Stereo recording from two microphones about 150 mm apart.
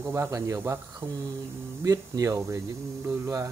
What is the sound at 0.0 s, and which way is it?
Speech, 20° right (ahead or behind).